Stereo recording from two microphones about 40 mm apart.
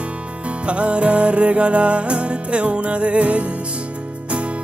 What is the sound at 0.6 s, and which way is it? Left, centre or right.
Music, right.